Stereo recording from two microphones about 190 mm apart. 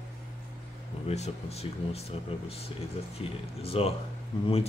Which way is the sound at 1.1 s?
35° left (ahead or behind).